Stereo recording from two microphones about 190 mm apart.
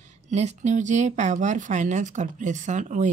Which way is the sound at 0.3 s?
35° right (ahead or behind).